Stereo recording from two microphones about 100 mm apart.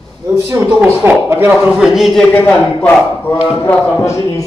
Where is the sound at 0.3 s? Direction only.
25° right (ahead or behind).